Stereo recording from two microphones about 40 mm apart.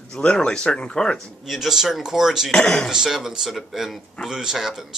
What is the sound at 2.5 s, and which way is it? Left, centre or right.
Speech, centre.